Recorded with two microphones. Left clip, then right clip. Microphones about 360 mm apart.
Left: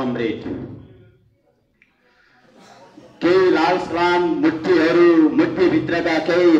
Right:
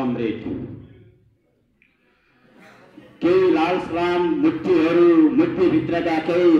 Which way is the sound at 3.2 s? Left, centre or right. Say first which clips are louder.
Left 2 dB; left.